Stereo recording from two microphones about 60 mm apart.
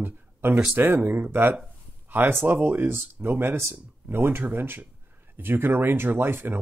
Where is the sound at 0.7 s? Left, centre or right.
Right.